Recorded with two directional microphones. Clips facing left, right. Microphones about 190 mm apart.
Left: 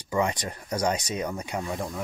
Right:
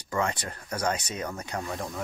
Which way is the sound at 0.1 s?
15° left (ahead or behind).